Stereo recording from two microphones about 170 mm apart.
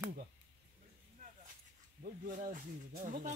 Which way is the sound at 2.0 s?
50° right (ahead or behind).